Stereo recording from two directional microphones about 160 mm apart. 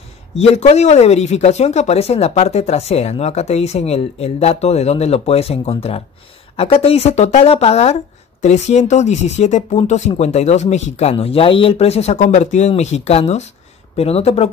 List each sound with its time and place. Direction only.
0.4 s speech: 45° left (ahead or behind)